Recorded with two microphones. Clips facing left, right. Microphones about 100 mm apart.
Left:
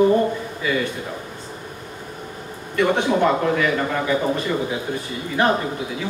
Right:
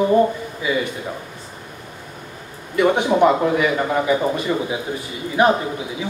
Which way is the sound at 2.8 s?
15° right (ahead or behind).